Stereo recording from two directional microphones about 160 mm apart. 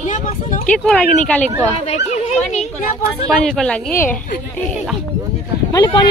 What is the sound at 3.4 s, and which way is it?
Speech, 5° left (ahead or behind).